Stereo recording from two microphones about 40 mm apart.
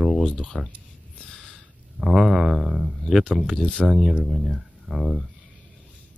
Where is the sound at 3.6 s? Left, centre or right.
Left.